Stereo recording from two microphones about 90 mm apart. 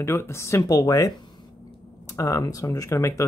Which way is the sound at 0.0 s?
30° left (ahead or behind).